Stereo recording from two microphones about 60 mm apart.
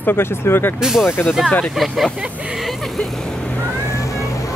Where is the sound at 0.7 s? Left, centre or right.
Centre.